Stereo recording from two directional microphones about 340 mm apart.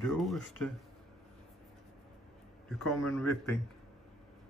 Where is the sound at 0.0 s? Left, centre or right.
Centre.